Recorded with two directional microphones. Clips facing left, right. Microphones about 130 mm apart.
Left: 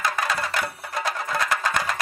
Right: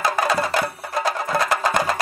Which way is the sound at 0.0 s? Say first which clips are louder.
Right 5 dB; 35° right (ahead or behind).